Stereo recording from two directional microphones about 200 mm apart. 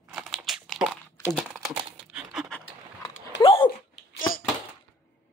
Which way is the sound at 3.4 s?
25° left (ahead or behind).